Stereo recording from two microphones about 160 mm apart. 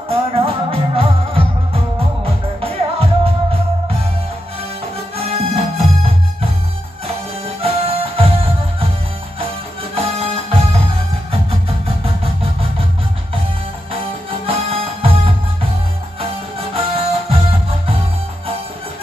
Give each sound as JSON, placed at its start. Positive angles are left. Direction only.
{"t": 0.1, "sound": "music", "side_deg": -35}
{"t": 5.1, "sound": "music", "side_deg": -40}
{"t": 7.4, "sound": "music", "side_deg": -35}
{"t": 9.9, "sound": "music", "side_deg": -35}
{"t": 14.4, "sound": "music", "side_deg": -35}
{"t": 16.7, "sound": "music", "side_deg": -35}